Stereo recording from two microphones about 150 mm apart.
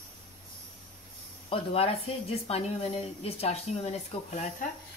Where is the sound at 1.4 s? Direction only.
40° left (ahead or behind).